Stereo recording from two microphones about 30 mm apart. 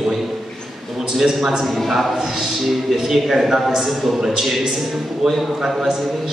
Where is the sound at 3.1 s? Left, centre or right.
Centre.